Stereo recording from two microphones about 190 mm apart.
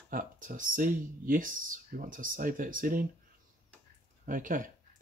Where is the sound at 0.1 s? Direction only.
45° right (ahead or behind).